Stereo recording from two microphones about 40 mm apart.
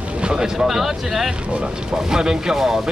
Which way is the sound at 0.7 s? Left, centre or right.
Centre.